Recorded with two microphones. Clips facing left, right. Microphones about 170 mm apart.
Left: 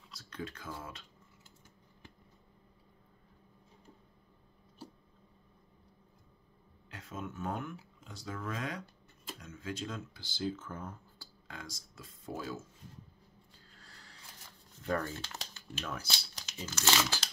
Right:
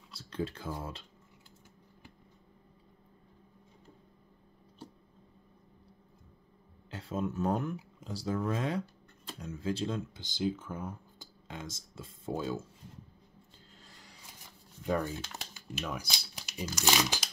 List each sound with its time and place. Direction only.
0.1 s speech: 30° right (ahead or behind)
6.9 s speech: 30° right (ahead or behind)
10.2 s speech: 15° right (ahead or behind)
11.4 s speech: 20° right (ahead or behind)
13.7 s music: 20° right (ahead or behind)
14.8 s speech: 15° right (ahead or behind)